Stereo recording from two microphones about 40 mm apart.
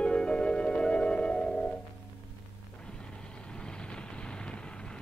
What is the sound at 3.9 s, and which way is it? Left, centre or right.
Vehicle, left.